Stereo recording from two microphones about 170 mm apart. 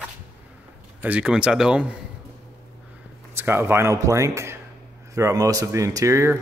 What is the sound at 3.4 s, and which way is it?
Speech, 15° right (ahead or behind).